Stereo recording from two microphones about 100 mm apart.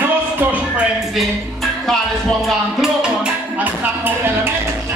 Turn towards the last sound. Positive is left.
turn(degrees=-20)  # may be behind; listen again after turning